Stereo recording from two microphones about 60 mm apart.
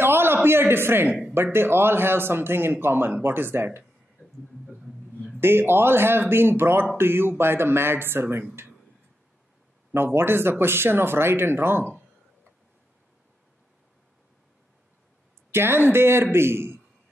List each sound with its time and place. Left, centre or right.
0.0 s a sound: right
1.3 s a man's voice: right
4.6 s a sound: centre
5.4 s a man's voice: right
9.9 s a man's voice: right
15.5 s a man's voice: right